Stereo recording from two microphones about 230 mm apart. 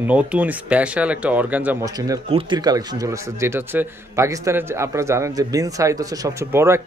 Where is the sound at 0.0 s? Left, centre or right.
Centre.